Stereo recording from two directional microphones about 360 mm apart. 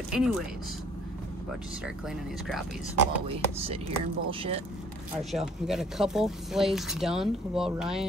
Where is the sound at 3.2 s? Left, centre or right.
Centre.